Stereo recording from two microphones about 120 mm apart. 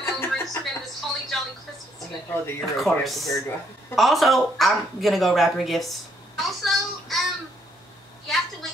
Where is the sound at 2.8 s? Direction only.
Centre (ahead or behind).